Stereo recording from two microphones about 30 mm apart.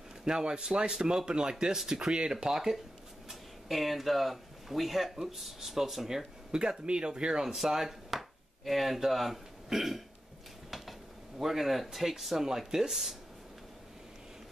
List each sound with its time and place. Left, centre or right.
0.2 s speech: right
2.4 s speech: centre
3.3 s speech: centre; by 7.4 s right
7.5 s speech: centre
11.3 s speech: centre